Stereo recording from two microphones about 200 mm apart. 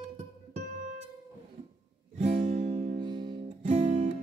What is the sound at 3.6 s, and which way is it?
Music, 35° right (ahead or behind).